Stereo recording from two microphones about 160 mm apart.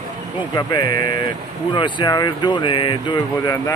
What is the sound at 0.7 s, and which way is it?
Speech, 25° left (ahead or behind).